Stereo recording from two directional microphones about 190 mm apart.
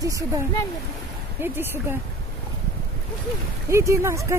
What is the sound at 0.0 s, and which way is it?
Speech, 15° right (ahead or behind).